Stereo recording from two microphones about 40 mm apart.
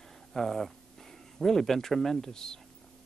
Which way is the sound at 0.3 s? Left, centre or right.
Centre.